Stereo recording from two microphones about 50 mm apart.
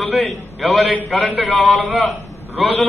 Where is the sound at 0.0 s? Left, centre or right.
Centre.